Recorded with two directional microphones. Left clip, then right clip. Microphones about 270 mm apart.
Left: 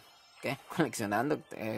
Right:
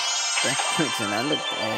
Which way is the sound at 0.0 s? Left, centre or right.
Right.